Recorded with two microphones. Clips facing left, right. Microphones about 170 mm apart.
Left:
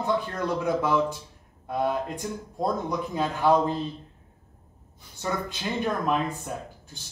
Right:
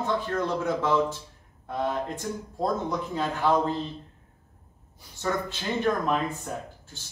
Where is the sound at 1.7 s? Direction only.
15° left (ahead or behind).